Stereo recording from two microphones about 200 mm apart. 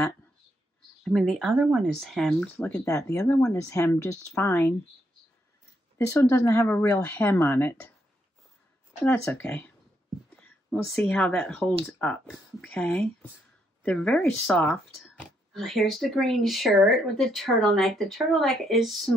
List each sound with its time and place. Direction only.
1.0 s speech: centre (ahead or behind)
5.9 s speech: 10° left (ahead or behind)
9.0 s speech: 10° left (ahead or behind)